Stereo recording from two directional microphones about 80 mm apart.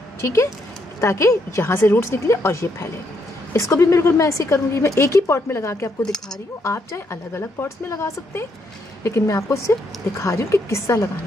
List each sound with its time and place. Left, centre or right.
1.0 s a woman's voice: left